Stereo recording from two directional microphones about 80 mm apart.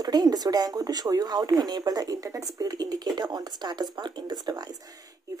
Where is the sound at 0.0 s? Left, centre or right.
Right.